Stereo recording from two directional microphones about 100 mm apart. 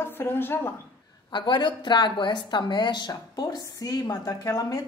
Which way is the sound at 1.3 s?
50° left (ahead or behind).